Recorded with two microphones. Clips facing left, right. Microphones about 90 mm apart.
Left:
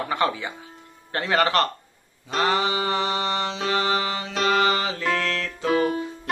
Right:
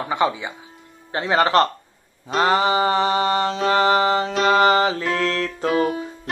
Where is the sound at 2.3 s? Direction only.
35° right (ahead or behind).